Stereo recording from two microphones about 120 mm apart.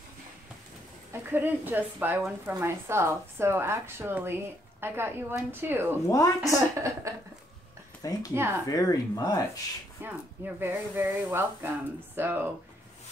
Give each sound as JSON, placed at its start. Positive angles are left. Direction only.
{"t": 1.1, "sound": "speech", "side_deg": -15}
{"t": 6.0, "sound": "speech", "side_deg": 25}
{"t": 6.8, "sound": "speech", "side_deg": -25}
{"t": 8.0, "sound": "speech", "side_deg": 30}
{"t": 8.4, "sound": "speech", "side_deg": -20}
{"t": 8.6, "sound": "speech", "side_deg": 30}
{"t": 10.0, "sound": "speech", "side_deg": -15}